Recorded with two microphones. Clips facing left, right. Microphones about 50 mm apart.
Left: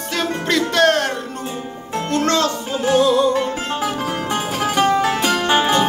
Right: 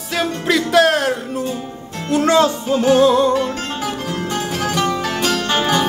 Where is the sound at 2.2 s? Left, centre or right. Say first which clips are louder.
Right 6 dB; centre.